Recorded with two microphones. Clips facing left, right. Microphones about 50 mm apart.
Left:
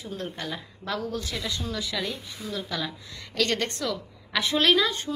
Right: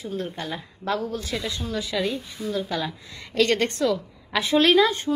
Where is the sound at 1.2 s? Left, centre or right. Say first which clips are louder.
Right 2 dB; centre.